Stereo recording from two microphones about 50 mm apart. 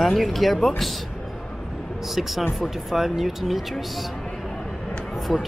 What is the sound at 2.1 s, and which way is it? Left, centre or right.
Speech, centre.